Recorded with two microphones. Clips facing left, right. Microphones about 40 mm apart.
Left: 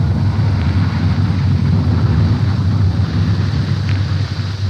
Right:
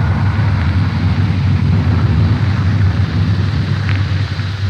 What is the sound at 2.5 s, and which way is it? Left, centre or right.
Vehicle, right.